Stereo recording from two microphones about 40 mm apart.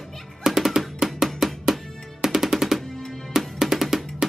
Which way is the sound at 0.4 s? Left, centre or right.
Centre.